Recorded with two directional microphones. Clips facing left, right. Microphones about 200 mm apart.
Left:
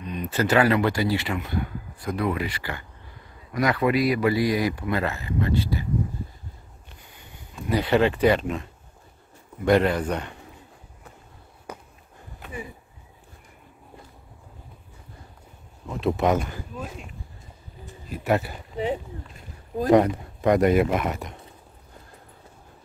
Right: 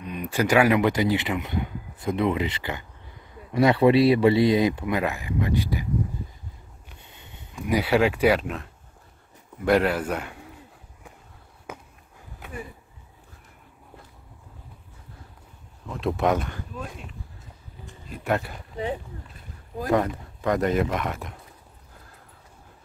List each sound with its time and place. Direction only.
0.0 s a man's voice: 10° right (ahead or behind)
7.0 s sniff: 25° right (ahead or behind)
7.5 s speech: 10° right (ahead or behind)
9.7 s speech: 5° right (ahead or behind)
15.9 s speech: centre (ahead or behind)
18.1 s speech: 5° left (ahead or behind)
19.8 s speech: 20° left (ahead or behind); by 21.4 s centre (ahead or behind)